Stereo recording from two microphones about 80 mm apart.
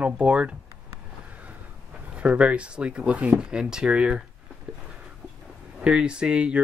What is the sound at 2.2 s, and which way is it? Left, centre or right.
Speech, centre.